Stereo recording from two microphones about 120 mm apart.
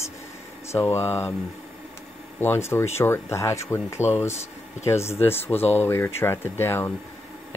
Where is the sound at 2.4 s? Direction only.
20° left (ahead or behind).